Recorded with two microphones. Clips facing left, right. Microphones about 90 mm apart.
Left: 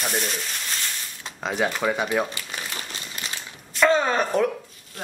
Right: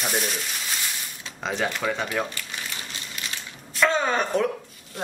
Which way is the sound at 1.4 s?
5° left (ahead or behind).